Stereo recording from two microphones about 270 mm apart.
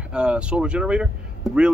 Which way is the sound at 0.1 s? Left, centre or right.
Centre.